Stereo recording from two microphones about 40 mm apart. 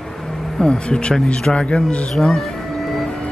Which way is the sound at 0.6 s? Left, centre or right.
Left.